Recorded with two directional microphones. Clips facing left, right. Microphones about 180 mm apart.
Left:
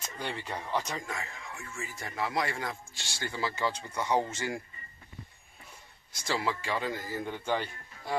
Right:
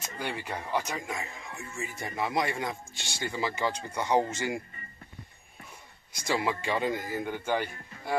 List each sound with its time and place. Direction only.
0.2 s speech: 10° right (ahead or behind)
6.1 s speech: 15° right (ahead or behind)